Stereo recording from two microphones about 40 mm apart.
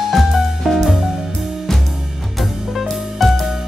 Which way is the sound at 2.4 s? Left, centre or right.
Centre.